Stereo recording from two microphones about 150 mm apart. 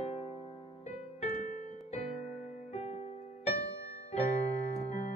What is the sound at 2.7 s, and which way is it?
Music, 45° left (ahead or behind).